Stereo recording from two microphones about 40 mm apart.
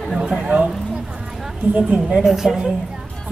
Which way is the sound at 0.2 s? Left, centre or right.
Right.